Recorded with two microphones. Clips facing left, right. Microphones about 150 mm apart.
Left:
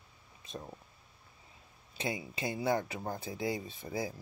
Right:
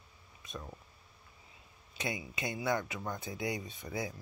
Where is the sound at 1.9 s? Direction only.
30° left (ahead or behind).